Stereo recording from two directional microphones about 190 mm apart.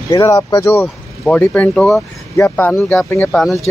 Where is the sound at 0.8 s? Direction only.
5° left (ahead or behind).